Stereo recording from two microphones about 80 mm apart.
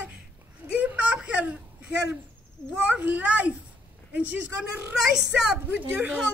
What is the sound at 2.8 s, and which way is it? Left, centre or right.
Speech, centre.